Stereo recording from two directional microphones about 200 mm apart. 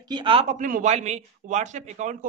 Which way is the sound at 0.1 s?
25° right (ahead or behind).